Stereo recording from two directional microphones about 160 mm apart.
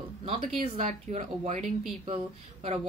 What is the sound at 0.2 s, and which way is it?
Speech, 35° right (ahead or behind).